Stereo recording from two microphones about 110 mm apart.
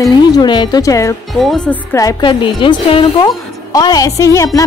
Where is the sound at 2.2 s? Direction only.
45° left (ahead or behind).